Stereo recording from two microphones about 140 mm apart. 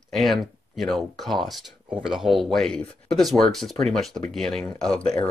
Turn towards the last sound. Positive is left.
turn(degrees=5)  # may be behind; listen again after turning